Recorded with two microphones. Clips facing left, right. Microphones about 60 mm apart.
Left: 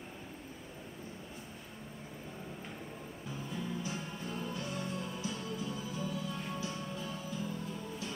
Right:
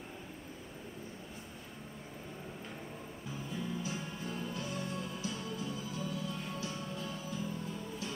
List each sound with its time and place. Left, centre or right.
3.4 s music: centre